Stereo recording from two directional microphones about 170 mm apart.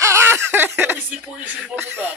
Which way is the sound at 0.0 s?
15° right (ahead or behind).